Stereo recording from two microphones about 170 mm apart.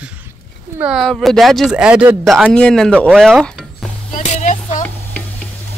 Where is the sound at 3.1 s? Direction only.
Centre (ahead or behind).